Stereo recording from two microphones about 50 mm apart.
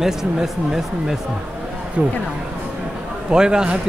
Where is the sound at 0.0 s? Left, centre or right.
Centre.